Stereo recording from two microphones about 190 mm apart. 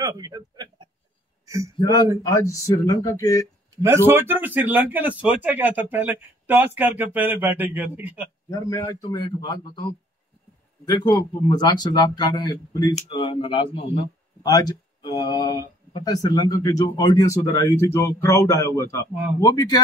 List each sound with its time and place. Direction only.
0.0 s a sound: 20° right (ahead or behind)
1.8 s speech: 20° left (ahead or behind)
3.8 s speech: 10° right (ahead or behind)
8.5 s speech: 20° left (ahead or behind)
10.9 s speech: 20° left (ahead or behind)